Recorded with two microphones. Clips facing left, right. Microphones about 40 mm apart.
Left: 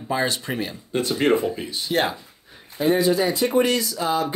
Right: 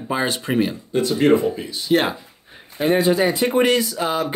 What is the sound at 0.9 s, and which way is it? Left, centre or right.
Speech, left.